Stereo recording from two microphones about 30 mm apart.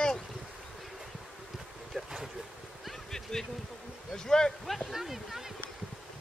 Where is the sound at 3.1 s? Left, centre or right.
Centre.